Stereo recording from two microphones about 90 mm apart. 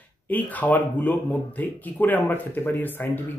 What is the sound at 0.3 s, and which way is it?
Speech, 20° left (ahead or behind).